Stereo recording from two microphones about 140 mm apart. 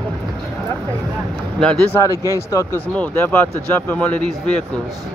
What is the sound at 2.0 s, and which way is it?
Speech, 25° left (ahead or behind).